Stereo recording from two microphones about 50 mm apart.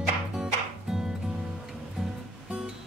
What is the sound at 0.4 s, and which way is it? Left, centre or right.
Music, centre.